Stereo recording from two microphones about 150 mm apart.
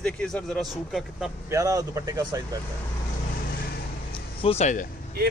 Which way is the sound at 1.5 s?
25° right (ahead or behind).